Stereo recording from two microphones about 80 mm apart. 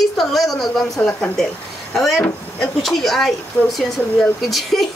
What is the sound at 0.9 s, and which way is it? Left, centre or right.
Speech, centre.